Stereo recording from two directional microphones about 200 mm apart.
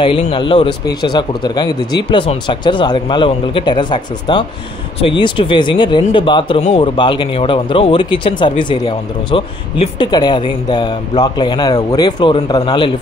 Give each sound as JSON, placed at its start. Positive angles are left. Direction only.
{"t": 0.0, "sound": "speech", "side_deg": 25}